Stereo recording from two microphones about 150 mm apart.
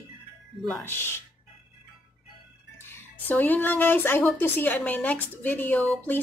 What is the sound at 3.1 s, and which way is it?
Speech, 10° left (ahead or behind).